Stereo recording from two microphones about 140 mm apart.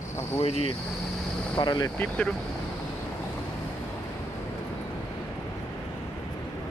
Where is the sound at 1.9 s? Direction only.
10° left (ahead or behind).